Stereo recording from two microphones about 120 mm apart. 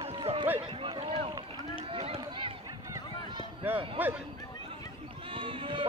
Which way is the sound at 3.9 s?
15° right (ahead or behind).